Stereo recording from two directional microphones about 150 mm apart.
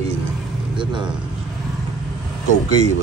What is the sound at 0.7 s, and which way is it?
Speech, 30° right (ahead or behind).